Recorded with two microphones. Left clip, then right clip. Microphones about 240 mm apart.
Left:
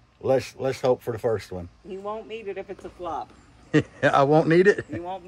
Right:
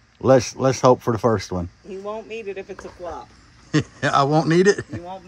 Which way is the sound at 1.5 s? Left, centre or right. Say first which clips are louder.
Right 7 dB; right.